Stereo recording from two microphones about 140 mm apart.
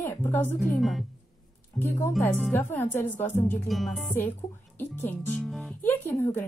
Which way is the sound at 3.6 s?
Centre (ahead or behind).